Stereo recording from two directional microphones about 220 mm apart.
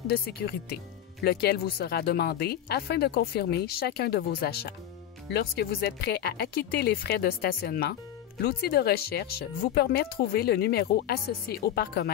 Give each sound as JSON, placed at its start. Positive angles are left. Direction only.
{"t": 0.1, "sound": "speech", "side_deg": 45}